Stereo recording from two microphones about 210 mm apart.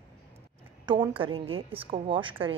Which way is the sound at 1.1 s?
25° right (ahead or behind).